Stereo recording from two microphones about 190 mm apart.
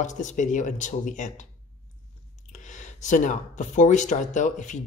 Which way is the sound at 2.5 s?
40° left (ahead or behind).